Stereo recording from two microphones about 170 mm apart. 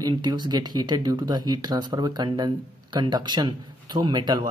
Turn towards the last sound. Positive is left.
turn(degrees=-25)  # may be behind; listen again after turning